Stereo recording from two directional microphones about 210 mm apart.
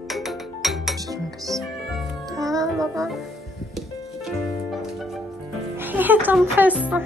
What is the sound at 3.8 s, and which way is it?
Music, centre (ahead or behind).